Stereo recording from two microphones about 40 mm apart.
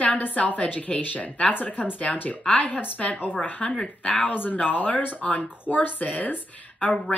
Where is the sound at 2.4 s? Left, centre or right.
Left.